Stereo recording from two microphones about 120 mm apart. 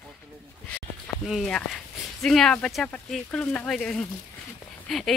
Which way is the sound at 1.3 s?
5° left (ahead or behind).